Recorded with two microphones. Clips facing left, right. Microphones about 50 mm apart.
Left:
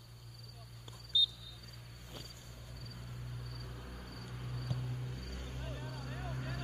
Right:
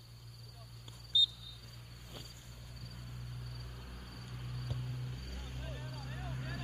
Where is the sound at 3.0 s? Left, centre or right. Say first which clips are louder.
Left 1 dB; left.